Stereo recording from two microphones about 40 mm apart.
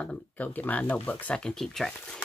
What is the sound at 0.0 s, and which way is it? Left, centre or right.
Speech, left.